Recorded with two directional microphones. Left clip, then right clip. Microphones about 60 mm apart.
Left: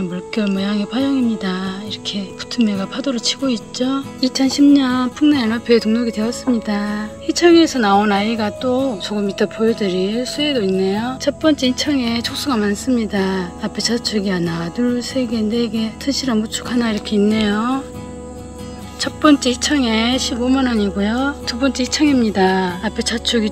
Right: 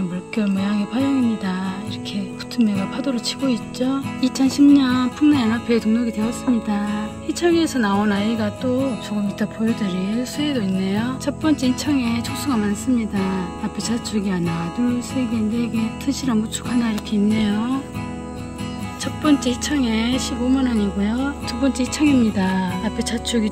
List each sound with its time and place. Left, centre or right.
0.1 s speech: right
4.2 s speech: centre
9.9 s speech: centre
11.2 s speech: centre
13.7 s speech: centre
16.1 s speech: centre
17.1 s speech: right
18.9 s speech: right